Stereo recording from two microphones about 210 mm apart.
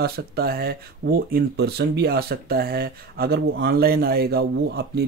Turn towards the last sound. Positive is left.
turn(degrees=-50)  # may be behind; listen again after turning